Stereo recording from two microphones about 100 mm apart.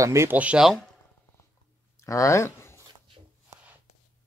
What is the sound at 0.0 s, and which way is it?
Speech, 30° right (ahead or behind).